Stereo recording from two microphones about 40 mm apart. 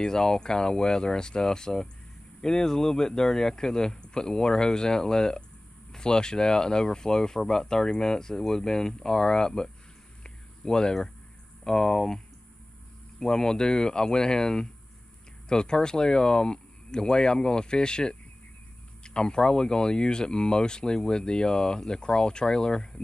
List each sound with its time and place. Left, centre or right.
0.0 s speech: centre
10.2 s a sound: centre
11.6 s speech: centre
13.2 s speech: centre